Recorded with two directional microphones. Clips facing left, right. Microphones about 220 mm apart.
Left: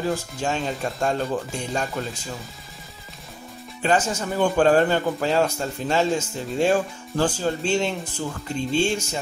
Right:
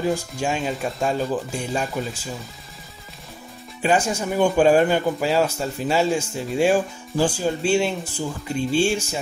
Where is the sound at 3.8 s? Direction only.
10° right (ahead or behind).